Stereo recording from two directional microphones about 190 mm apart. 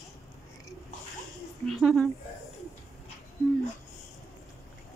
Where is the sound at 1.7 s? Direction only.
Centre (ahead or behind).